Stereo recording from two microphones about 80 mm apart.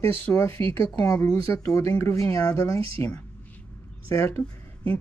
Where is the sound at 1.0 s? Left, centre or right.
Left.